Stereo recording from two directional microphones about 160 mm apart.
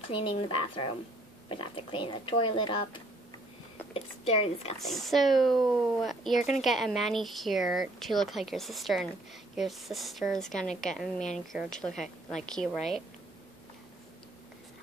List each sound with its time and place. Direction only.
0.1 s speech: 35° left (ahead or behind)
4.7 s speech: centre (ahead or behind)